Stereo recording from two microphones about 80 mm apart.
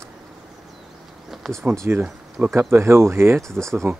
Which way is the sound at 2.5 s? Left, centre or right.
Right.